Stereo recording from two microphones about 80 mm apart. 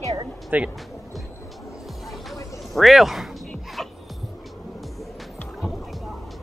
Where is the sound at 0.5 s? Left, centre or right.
Centre.